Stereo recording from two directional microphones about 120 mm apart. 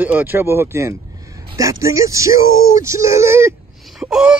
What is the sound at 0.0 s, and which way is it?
Speech, 15° right (ahead or behind).